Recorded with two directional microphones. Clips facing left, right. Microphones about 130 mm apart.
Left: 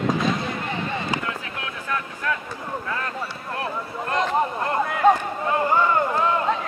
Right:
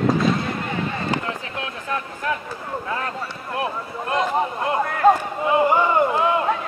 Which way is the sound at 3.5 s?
15° right (ahead or behind).